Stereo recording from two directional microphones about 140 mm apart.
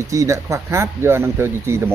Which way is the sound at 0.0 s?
25° right (ahead or behind).